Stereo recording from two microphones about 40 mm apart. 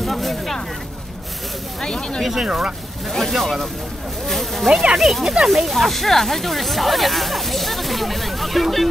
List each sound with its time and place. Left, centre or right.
0.0 s speech: centre
1.8 s speech: left
2.2 s speech: centre
3.1 s speech: centre